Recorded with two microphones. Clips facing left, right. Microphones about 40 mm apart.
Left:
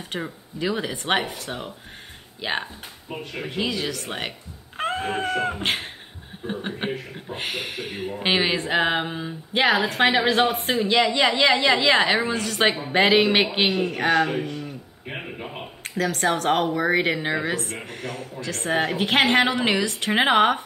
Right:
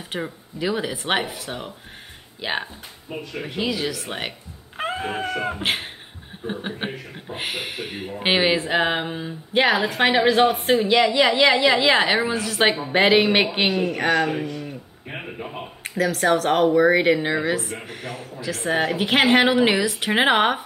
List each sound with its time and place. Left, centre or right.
0.1 s speech: centre
4.7 s wail: centre
5.3 s speech: centre
13.9 s speech: centre
15.1 s a sound: centre
15.8 s speech: centre